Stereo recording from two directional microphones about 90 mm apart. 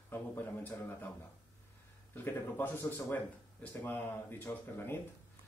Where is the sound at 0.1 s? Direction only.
25° left (ahead or behind).